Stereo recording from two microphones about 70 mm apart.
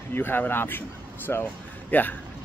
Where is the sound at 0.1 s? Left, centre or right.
Left.